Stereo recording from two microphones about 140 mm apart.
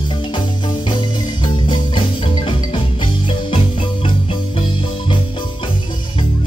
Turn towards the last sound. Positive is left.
turn(degrees=40)  # may be behind; listen again after turning